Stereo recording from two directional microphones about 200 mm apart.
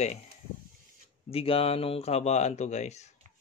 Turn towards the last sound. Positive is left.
turn(degrees=35)  # may be behind; listen again after turning